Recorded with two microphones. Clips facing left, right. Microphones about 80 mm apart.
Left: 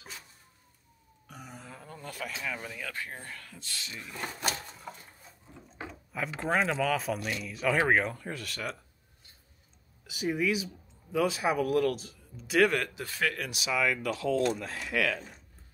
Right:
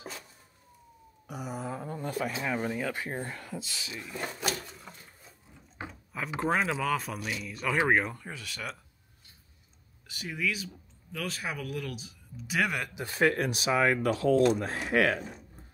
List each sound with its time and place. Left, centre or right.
1.2 s a sound: centre
1.8 s speech: right
2.9 s speech: right
3.5 s speech: centre
4.6 s a sound: centre
6.4 s speech: centre
10.0 s speech: centre
12.9 s speech: right